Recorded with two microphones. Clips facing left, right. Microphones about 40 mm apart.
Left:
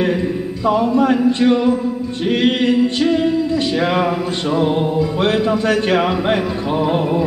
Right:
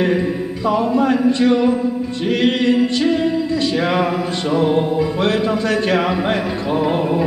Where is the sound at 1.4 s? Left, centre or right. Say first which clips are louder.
Even; centre.